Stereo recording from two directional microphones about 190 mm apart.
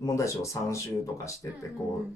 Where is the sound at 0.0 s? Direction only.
15° left (ahead or behind).